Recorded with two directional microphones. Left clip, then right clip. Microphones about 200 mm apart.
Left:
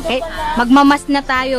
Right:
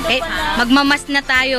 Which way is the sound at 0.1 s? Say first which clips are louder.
Even; 20° left (ahead or behind).